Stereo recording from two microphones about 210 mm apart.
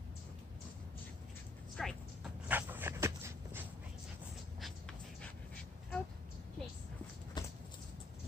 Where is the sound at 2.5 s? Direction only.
10° right (ahead or behind).